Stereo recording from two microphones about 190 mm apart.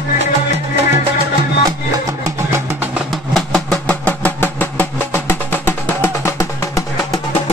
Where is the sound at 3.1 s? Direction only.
Centre (ahead or behind).